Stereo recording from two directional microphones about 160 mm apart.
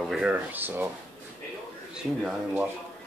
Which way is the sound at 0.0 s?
5° right (ahead or behind).